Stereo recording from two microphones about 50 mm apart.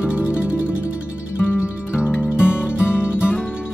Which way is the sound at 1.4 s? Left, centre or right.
Left.